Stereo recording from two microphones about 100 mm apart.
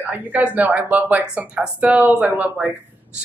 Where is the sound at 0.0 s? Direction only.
15° right (ahead or behind).